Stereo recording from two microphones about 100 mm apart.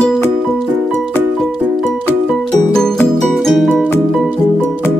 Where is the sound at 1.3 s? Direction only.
5° left (ahead or behind).